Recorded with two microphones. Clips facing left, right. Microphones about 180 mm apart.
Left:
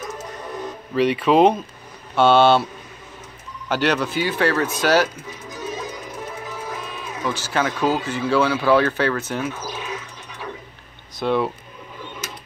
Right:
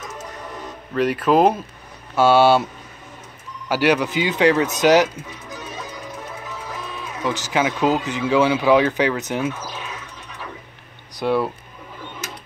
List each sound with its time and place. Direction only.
0.9 s speech: centre (ahead or behind)
3.6 s speech: 10° right (ahead or behind)
7.2 s speech: 15° right (ahead or behind)
11.1 s speech: 10° right (ahead or behind)